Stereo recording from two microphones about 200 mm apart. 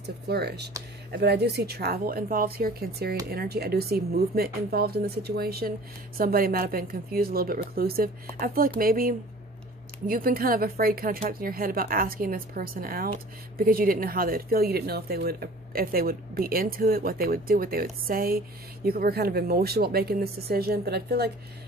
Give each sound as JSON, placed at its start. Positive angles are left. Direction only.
{"t": 0.0, "sound": "speech", "side_deg": -55}